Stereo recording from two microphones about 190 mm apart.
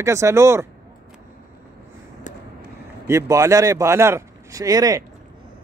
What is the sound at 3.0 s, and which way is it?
Speech, 15° right (ahead or behind).